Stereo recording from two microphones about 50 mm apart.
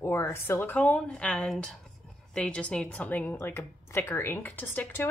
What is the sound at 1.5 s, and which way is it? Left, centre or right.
Speech, centre.